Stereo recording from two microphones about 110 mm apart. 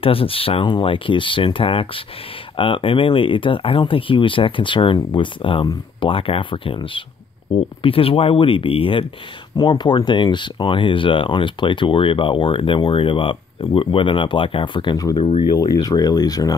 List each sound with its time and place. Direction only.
0.0 s speech: 55° left (ahead or behind)
9.6 s speech: 45° left (ahead or behind)
15.5 s speech: 35° left (ahead or behind)